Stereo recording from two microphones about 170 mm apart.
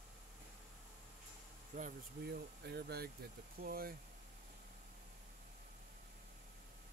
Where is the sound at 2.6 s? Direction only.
70° right (ahead or behind).